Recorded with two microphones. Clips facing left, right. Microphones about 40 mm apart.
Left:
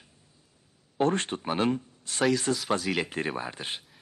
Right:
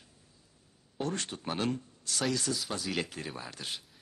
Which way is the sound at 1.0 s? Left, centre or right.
Left.